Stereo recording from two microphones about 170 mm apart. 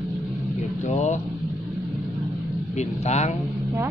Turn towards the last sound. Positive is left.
turn(degrees=40)  # may be behind; listen again after turning